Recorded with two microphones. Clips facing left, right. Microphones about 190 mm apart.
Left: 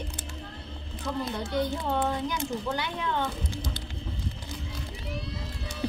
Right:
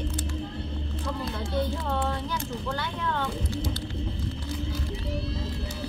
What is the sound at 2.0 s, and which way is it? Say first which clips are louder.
Speech: left 2 dB; 15° left (ahead or behind).